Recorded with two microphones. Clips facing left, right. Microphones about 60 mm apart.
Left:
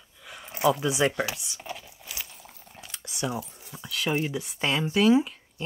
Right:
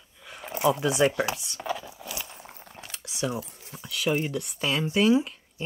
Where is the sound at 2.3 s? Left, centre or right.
Right.